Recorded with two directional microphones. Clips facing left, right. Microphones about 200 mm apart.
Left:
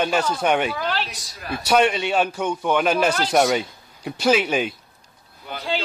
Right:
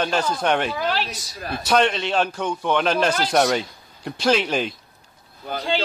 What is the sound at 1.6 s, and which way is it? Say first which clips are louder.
A man's voice: left 1 dB; 10° left (ahead or behind).